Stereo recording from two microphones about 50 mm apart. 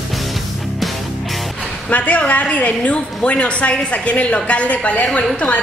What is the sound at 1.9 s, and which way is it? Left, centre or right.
A woman's voice, left.